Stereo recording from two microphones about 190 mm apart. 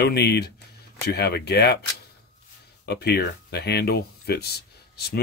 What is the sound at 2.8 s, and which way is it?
Speech, 60° left (ahead or behind).